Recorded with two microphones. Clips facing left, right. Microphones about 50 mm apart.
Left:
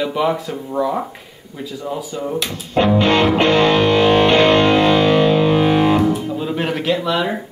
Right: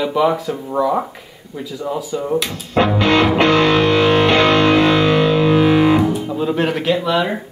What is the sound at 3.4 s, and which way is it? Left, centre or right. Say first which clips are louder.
Music: even; left.